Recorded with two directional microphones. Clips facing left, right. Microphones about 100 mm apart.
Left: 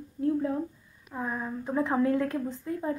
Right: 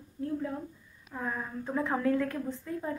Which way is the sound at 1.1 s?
15° left (ahead or behind).